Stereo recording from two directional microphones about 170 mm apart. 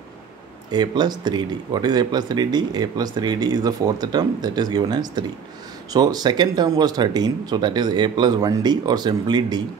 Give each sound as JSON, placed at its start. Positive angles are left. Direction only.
{"t": 0.7, "sound": "speech", "side_deg": -25}